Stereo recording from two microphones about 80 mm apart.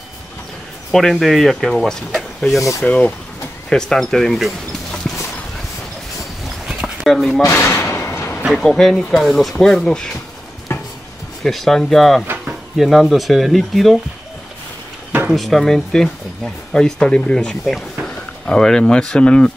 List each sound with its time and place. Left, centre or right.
0.9 s speech: centre
2.8 s speech: centre
6.7 s a sound: centre
7.4 s slam: left
8.5 s speech: centre
10.7 s chopping: left
11.4 s speech: centre
15.2 s speech: centre